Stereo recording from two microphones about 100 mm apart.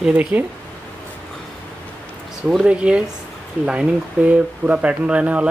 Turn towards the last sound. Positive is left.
turn(degrees=-10)  # may be behind; listen again after turning